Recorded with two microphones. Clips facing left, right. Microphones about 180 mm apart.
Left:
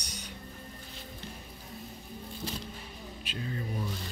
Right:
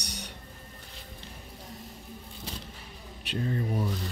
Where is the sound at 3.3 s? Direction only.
50° right (ahead or behind).